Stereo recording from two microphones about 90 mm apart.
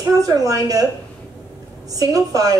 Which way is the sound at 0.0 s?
40° right (ahead or behind).